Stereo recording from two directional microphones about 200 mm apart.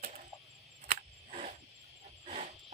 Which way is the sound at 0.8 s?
35° right (ahead or behind).